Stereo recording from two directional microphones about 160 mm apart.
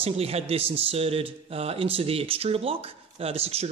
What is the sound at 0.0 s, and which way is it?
A man's voice, 40° right (ahead or behind).